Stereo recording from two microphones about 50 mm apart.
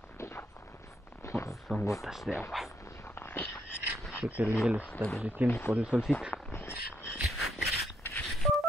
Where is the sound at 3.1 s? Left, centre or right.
Left.